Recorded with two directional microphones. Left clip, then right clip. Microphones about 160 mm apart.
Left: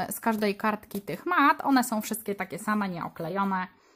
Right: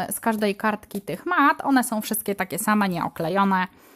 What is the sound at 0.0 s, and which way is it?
Speech, 20° right (ahead or behind).